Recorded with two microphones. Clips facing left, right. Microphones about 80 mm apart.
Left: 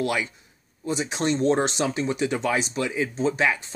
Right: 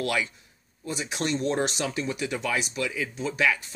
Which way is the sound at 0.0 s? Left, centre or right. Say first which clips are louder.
Left 2 dB; left.